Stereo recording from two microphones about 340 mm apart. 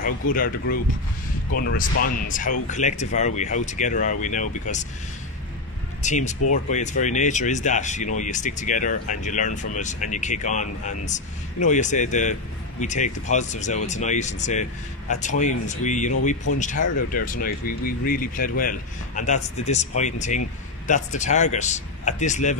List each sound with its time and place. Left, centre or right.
0.0 s speech: left
6.0 s speech: left